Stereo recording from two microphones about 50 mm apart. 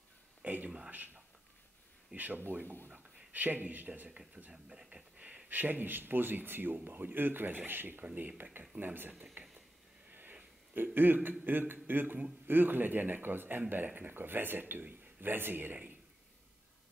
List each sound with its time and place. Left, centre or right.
0.4 s a sound: right
0.8 s speech: right
2.6 s speech: right
2.9 s a sound: centre
3.3 s speech: right
4.5 s speech: centre; by 8.0 s right
8.0 s speech: right
8.7 s speech: right
10.8 s speech: right